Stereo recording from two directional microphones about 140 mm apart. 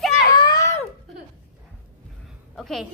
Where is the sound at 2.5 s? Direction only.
Centre (ahead or behind).